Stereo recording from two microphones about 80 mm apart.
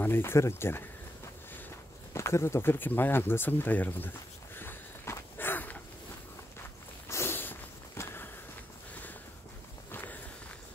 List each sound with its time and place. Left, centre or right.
0.0 s speech: left
2.1 s speech: left
4.6 s walk: left
7.1 s walk: left
9.8 s walk: left